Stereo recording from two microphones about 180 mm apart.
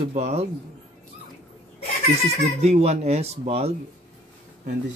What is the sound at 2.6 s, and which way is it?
Speech, 35° right (ahead or behind).